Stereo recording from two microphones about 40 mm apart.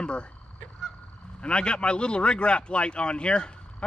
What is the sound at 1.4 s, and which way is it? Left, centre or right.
Speech, left.